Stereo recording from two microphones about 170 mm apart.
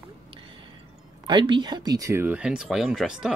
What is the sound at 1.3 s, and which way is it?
Speech, 25° right (ahead or behind).